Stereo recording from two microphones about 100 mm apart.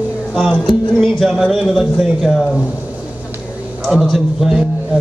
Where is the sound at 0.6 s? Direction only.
Centre (ahead or behind).